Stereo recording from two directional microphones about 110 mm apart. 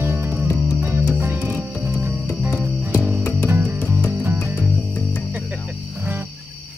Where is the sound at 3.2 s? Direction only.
15° left (ahead or behind).